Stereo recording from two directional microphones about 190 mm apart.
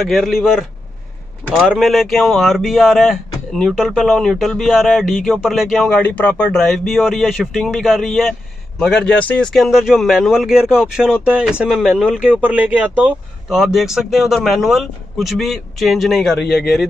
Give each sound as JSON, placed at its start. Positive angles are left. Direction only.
{"t": 0.0, "sound": "speech", "side_deg": 0}
{"t": 16.4, "sound": "speech", "side_deg": 60}